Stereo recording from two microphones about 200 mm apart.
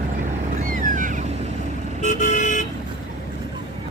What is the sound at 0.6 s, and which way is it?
Boat, 40° right (ahead or behind).